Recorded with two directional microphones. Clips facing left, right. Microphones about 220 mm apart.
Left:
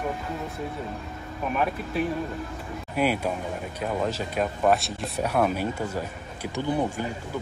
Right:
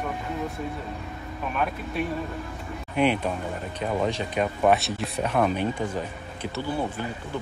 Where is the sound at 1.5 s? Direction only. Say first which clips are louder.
Left 1 dB; centre (ahead or behind).